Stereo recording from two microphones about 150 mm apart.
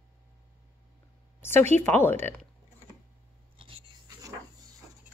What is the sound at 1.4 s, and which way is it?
Speech, 15° left (ahead or behind).